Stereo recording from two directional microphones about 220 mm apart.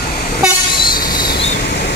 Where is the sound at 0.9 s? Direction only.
40° left (ahead or behind).